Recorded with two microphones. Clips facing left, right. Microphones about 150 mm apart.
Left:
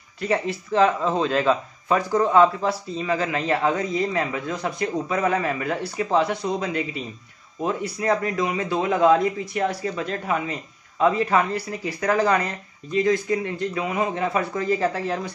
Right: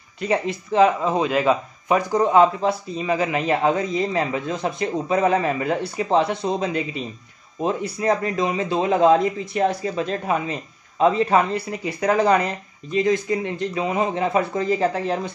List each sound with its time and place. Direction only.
0.2 s speech: 20° right (ahead or behind)